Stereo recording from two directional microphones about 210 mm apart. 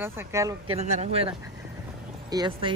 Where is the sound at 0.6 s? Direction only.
30° right (ahead or behind).